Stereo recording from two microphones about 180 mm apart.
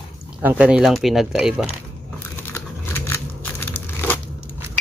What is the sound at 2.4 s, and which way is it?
Crumpling, 15° left (ahead or behind).